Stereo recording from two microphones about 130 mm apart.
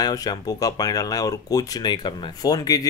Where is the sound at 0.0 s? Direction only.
30° left (ahead or behind).